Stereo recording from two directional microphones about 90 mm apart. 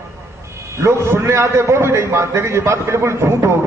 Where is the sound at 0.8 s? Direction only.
30° right (ahead or behind).